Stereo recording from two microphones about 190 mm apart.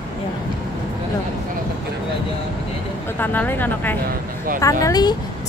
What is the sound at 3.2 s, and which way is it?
A woman's voice, 10° left (ahead or behind).